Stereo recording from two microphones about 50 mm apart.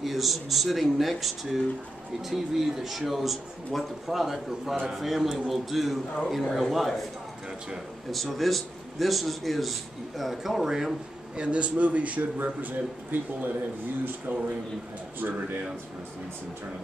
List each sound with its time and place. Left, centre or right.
0.0 s a man's voice: centre
8.1 s a man's voice: centre
11.4 s a man's voice: right
15.1 s speech: right